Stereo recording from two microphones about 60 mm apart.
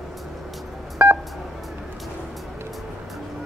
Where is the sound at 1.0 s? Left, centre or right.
Right.